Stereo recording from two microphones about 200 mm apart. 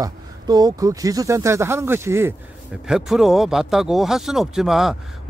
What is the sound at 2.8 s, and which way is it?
Speech, centre (ahead or behind).